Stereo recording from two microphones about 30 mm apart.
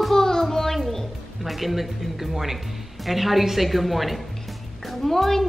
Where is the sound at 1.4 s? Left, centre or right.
Centre.